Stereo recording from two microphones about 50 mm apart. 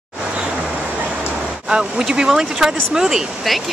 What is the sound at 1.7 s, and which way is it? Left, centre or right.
Speech, centre.